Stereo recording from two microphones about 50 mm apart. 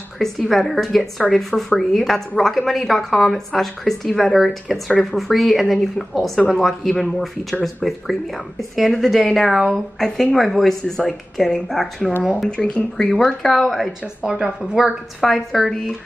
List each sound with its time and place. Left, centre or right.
0.5 s a woman's voice: centre
12.4 s speech: left
13.4 s a woman's voice: centre
14.2 s a woman's voice: centre
15.1 s a woman's voice: centre